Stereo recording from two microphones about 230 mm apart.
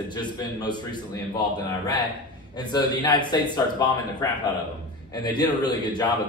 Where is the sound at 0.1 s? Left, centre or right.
Centre.